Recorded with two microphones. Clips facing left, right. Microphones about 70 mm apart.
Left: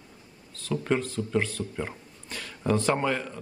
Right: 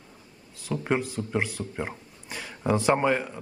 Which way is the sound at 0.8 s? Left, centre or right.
Centre.